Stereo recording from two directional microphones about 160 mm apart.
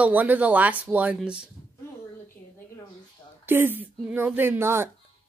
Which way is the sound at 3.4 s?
15° right (ahead or behind).